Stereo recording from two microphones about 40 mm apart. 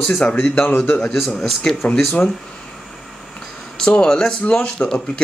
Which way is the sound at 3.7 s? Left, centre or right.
Centre.